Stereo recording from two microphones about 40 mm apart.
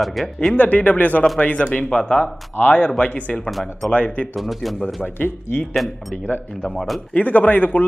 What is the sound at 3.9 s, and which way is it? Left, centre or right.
Speech, left.